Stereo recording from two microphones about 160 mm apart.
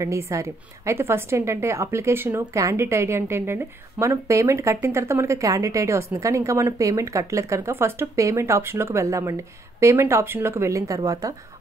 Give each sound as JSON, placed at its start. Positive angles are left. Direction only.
{"t": 0.0, "sound": "a woman's voice", "side_deg": -20}